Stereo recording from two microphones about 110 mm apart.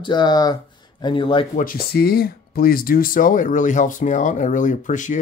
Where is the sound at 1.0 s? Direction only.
50° left (ahead or behind).